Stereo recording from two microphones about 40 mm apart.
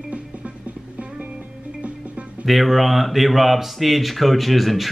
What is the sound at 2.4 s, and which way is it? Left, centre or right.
Speech, centre.